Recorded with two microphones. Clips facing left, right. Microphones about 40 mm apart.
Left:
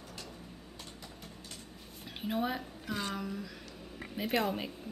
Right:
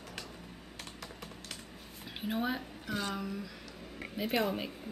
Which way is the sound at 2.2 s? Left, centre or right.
Centre.